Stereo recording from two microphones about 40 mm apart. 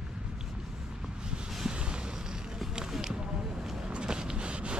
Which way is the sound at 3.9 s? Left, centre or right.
Right.